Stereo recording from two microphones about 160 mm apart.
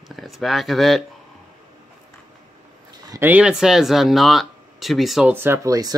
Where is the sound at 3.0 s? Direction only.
20° right (ahead or behind).